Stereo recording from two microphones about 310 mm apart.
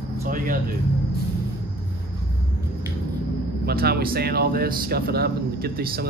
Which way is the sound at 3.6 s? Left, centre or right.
Right.